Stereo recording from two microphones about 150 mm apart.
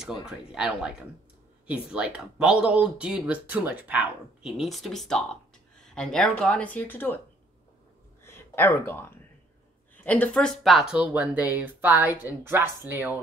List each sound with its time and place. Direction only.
0.5 s speech: 5° right (ahead or behind); by 7.2 s 10° left (ahead or behind)
8.2 s a sound: 15° left (ahead or behind)
10.0 s speech: 10° left (ahead or behind); by 13.2 s 10° right (ahead or behind)